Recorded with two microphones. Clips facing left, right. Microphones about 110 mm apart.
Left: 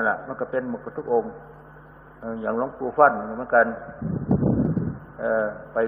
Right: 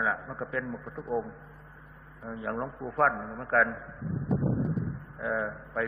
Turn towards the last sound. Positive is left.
turn(degrees=35)  # may be behind; listen again after turning